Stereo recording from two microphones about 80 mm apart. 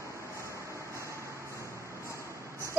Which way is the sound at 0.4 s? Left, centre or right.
Right.